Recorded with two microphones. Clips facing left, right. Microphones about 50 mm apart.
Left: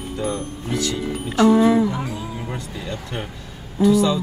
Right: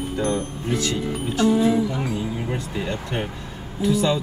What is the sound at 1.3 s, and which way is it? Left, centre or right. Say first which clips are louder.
Speech: left 5 dB; left.